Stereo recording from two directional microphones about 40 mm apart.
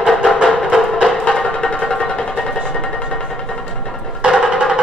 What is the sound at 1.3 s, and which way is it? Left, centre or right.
Music, left.